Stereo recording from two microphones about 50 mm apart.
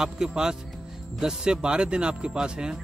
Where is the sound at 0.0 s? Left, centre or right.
Centre.